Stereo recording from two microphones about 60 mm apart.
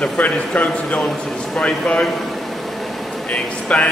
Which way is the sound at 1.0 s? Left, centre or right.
Centre.